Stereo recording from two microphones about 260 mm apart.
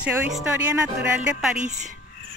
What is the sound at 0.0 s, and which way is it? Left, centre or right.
Speech, centre.